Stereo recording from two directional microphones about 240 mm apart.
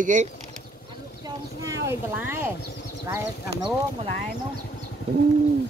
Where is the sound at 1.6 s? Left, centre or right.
Centre.